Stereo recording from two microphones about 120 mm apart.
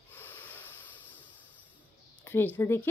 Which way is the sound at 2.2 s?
20° left (ahead or behind).